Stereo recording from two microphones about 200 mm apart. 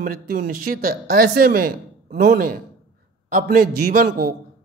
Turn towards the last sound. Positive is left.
turn(degrees=-45)  # may be behind; listen again after turning